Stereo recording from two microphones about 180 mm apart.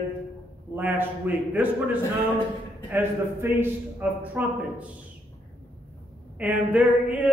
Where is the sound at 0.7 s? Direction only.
10° right (ahead or behind).